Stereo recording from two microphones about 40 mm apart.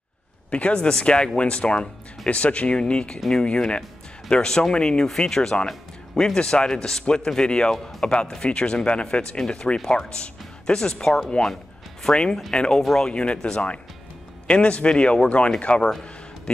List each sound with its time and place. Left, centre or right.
0.5 s speech: left
12.5 s speech: centre
13.1 s speech: left
14.5 s speech: left